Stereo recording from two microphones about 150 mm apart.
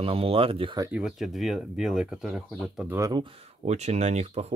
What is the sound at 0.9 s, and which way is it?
Speech, 5° right (ahead or behind).